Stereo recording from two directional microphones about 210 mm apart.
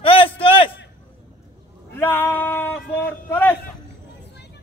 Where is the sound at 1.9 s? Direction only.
10° left (ahead or behind).